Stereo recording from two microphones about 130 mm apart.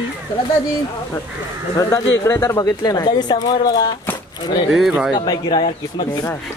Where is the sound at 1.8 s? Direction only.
20° left (ahead or behind).